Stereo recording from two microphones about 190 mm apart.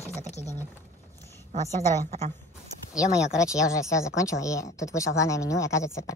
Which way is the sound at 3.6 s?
15° left (ahead or behind).